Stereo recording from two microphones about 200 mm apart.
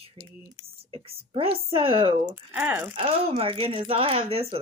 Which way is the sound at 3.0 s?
30° right (ahead or behind).